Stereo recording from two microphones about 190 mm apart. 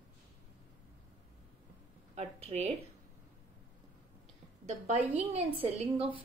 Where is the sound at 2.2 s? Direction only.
35° right (ahead or behind).